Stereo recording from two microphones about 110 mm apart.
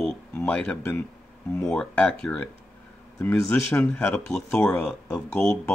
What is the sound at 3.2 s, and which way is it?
Speech, 20° left (ahead or behind).